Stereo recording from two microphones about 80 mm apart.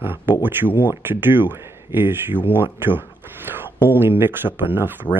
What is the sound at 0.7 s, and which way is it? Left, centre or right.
Speech, right.